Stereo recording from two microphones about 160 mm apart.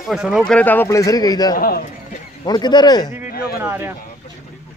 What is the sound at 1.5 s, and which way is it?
Speech, 65° left (ahead or behind).